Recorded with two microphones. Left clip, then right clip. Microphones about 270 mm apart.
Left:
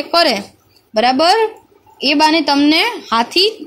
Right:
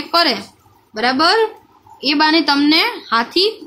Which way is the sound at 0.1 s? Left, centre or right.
Centre.